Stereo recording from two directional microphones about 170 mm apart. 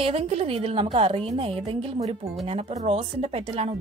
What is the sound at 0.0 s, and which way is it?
Speech, 35° right (ahead or behind).